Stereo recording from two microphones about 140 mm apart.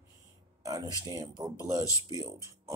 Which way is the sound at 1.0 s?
30° right (ahead or behind).